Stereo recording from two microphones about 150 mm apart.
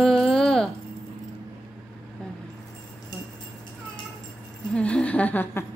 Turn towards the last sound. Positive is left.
turn(degrees=10)  # may be behind; listen again after turning